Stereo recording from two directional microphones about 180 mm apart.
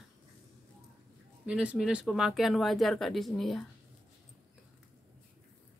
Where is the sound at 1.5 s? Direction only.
5° right (ahead or behind).